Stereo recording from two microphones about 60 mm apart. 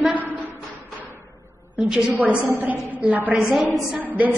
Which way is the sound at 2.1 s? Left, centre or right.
Right.